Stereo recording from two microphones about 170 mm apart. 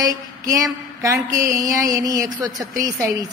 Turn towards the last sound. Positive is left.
turn(degrees=-20)  # may be behind; listen again after turning